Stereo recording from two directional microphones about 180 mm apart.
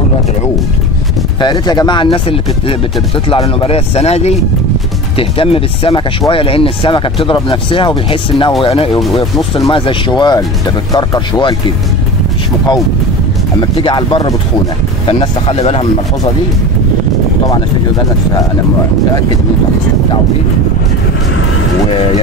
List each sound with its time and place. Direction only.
1.4 s speech: 25° left (ahead or behind)
3.6 s speech: 35° left (ahead or behind)
13.6 s speech: 25° left (ahead or behind)